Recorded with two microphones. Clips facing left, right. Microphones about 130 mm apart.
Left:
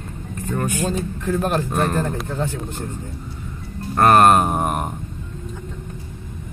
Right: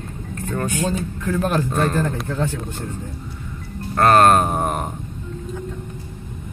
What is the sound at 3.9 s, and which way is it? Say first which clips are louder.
Speech: even; 15° left (ahead or behind).